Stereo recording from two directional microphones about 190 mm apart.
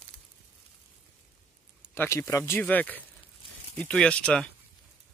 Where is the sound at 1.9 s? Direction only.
15° left (ahead or behind).